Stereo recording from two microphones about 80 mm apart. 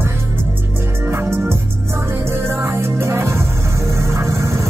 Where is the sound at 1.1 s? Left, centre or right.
Right.